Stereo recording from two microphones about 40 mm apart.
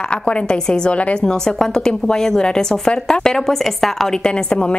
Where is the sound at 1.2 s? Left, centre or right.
Centre.